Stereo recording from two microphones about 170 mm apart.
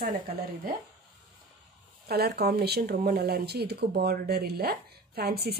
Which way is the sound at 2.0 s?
65° right (ahead or behind).